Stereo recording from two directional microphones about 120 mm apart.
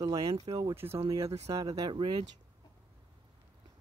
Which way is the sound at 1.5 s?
30° right (ahead or behind).